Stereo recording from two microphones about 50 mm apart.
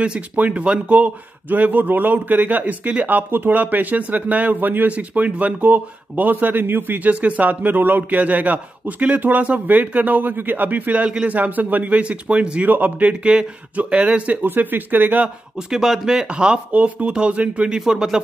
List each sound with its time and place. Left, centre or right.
0.0 s a man's voice: right
3.3 s a man's voice: right
12.6 s a man's voice: right
13.2 s speech: right
14.4 s a man's voice: right
15.2 s speech: centre
16.7 s speech: right; by 18.2 s centre